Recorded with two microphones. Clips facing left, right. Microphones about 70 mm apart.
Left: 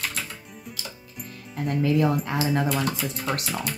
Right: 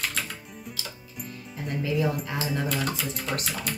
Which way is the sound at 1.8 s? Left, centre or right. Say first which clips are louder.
Left 5 dB; left.